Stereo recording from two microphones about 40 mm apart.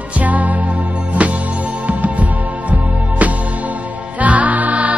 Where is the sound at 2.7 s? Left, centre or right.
Right.